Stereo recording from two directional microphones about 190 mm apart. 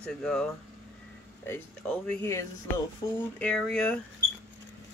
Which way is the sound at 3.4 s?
5° left (ahead or behind).